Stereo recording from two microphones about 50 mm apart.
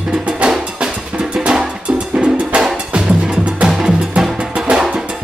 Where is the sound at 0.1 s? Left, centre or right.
Centre.